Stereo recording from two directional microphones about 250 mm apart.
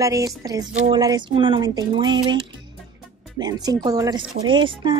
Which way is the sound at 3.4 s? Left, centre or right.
Centre.